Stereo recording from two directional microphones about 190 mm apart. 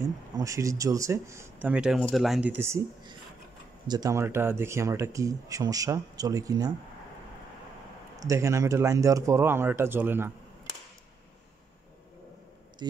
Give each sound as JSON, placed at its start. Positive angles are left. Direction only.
{"t": 0.0, "sound": "speech", "side_deg": -15}
{"t": 8.2, "sound": "speech", "side_deg": -15}